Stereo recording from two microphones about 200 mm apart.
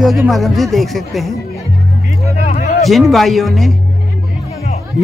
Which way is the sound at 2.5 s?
40° left (ahead or behind).